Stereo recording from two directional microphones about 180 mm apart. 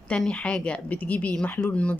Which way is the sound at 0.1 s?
5° left (ahead or behind).